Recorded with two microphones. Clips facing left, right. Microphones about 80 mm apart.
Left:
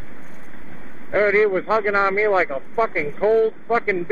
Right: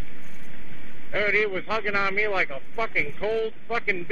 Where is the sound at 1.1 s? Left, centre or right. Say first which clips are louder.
Left 8 dB; left.